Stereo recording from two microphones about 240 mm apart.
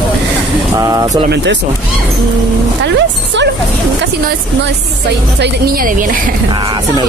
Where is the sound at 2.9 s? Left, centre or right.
Right.